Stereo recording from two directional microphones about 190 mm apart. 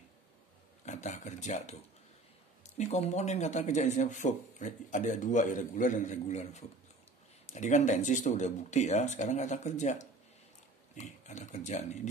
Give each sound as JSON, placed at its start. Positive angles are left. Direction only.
{"t": 0.8, "sound": "speech", "side_deg": 40}